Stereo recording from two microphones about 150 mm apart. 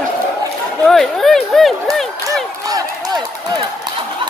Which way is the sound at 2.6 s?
25° right (ahead or behind).